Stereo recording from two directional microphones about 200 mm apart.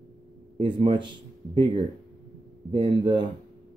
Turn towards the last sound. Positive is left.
turn(degrees=-25)  # may be behind; listen again after turning